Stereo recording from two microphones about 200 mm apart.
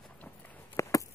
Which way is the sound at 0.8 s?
15° left (ahead or behind).